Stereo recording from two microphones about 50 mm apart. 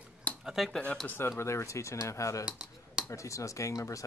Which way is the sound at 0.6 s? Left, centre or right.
Centre.